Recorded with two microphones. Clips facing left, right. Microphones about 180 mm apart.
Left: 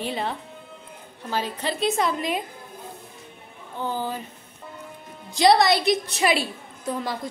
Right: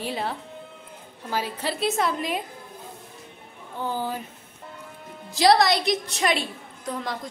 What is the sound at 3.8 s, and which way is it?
Speech, 10° right (ahead or behind).